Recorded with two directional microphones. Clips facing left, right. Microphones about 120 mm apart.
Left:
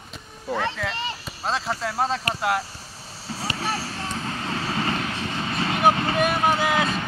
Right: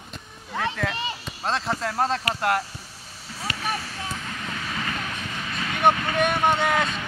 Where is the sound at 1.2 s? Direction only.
Centre (ahead or behind).